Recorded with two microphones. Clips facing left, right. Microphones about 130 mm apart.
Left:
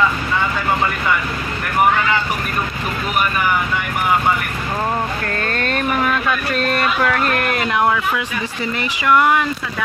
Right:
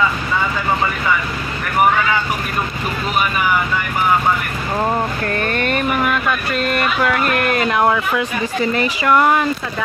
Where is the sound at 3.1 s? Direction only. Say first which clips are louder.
Right 1 dB; 10° right (ahead or behind).